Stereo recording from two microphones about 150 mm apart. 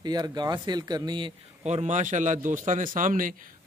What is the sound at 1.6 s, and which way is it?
A man's voice, 45° right (ahead or behind).